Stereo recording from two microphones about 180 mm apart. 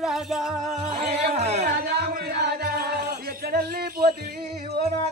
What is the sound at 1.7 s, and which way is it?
Music, 60° right (ahead or behind).